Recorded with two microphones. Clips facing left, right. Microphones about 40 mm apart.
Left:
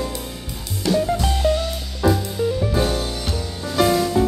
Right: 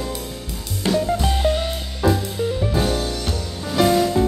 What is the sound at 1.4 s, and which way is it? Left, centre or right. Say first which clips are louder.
Music: even; right.